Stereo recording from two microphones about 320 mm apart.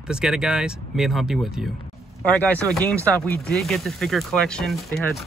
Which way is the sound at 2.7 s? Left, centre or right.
Centre.